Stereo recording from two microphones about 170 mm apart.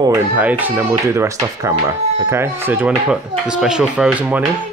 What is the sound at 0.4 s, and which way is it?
Speech, 10° right (ahead or behind).